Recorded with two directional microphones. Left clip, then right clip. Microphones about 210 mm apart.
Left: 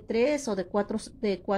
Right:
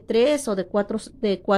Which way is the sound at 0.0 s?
30° right (ahead or behind).